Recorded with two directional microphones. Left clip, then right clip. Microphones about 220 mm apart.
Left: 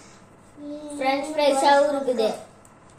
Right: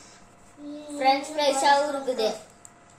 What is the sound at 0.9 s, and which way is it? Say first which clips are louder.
Speech: right 1 dB; 15° right (ahead or behind).